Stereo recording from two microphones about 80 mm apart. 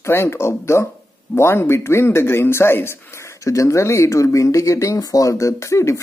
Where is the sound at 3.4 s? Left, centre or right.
Left.